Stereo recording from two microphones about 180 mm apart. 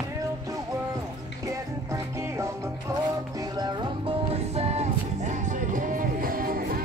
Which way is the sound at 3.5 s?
25° right (ahead or behind).